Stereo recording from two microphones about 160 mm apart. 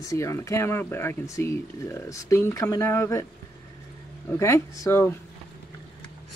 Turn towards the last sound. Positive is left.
turn(degrees=15)  # may be behind; listen again after turning